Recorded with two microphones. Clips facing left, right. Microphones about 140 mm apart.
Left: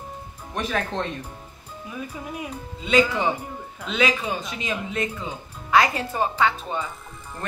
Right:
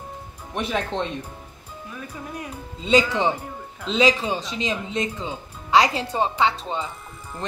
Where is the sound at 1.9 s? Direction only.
10° left (ahead or behind).